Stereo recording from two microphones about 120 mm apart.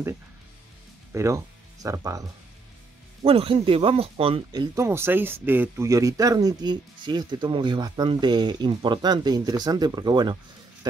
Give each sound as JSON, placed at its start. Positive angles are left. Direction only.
{"t": 1.1, "sound": "speech", "side_deg": -25}
{"t": 3.3, "sound": "speech", "side_deg": -50}
{"t": 4.5, "sound": "speech", "side_deg": -35}
{"t": 4.8, "sound": "speech", "side_deg": -20}